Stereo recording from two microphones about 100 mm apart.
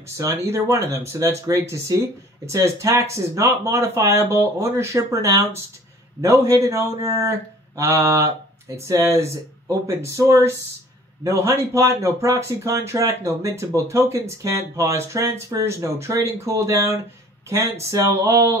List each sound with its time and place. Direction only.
0.4 s speech: 25° right (ahead or behind)